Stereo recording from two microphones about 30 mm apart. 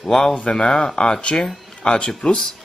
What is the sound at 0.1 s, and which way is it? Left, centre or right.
Speech, left.